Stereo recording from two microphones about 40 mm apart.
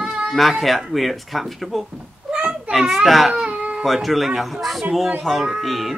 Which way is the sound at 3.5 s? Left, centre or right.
Right.